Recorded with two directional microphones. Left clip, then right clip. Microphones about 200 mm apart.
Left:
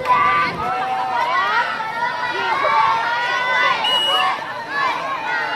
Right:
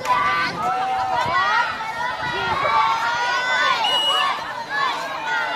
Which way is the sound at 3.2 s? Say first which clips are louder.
Left 2 dB; 55° right (ahead or behind).